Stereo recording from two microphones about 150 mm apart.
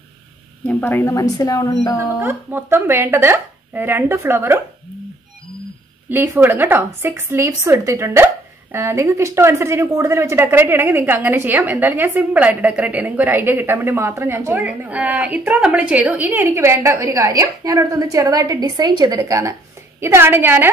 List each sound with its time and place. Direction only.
0.7 s speech: 10° left (ahead or behind)
2.0 s a woman's voice: 15° right (ahead or behind)
6.0 s a woman's voice: 15° right (ahead or behind)